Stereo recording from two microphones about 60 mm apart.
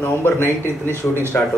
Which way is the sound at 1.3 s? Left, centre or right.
Left.